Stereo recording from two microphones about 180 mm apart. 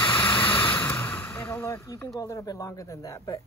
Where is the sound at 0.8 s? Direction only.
10° left (ahead or behind).